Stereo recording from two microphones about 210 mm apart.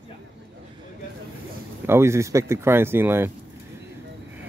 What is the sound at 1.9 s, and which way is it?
Speech, 10° right (ahead or behind).